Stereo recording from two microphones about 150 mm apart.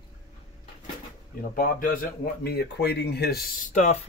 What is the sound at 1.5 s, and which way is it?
Speech, 65° left (ahead or behind).